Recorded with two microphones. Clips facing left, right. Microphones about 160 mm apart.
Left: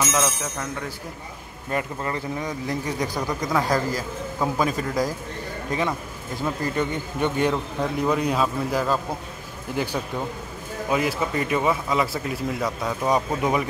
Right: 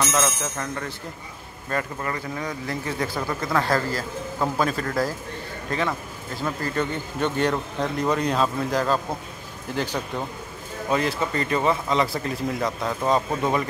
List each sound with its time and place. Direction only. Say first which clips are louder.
0.0 s a man's voice: even; 5° left (ahead or behind)
1.7 s a man's voice: left 1 dB; 20° left (ahead or behind)